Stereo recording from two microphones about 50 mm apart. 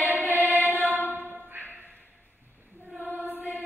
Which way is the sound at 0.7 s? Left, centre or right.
Right.